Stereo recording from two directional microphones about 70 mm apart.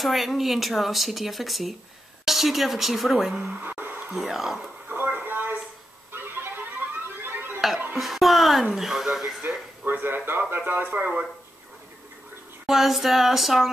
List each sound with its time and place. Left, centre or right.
0.0 s speech: centre
4.8 s a sound: right
7.9 s speech: centre
9.8 s speech: right
12.6 s speech: centre